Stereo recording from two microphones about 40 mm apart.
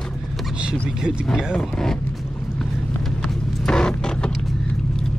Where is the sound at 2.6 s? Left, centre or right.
Centre.